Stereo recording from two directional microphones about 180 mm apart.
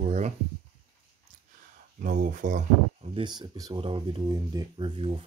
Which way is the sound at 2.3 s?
45° right (ahead or behind).